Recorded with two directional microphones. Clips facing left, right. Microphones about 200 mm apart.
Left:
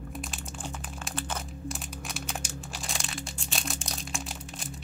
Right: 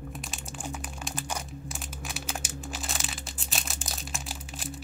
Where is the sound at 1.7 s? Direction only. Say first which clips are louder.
Left 2 dB; centre (ahead or behind).